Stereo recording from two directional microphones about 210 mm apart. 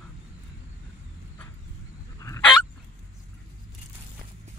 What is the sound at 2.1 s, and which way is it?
Fowl, 15° left (ahead or behind).